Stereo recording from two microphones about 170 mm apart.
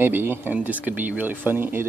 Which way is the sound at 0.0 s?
10° right (ahead or behind).